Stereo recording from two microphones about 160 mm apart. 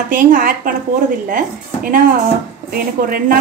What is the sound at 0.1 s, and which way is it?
Speech, 60° right (ahead or behind).